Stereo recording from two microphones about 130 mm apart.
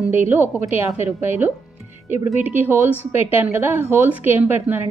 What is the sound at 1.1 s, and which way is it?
A woman's voice, 15° right (ahead or behind).